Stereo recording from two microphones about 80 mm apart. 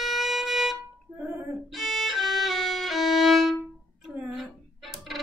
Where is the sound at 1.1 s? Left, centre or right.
Centre.